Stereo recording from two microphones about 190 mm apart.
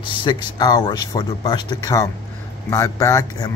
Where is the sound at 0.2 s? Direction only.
25° left (ahead or behind).